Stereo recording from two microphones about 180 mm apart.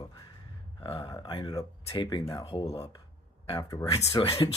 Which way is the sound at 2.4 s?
30° left (ahead or behind).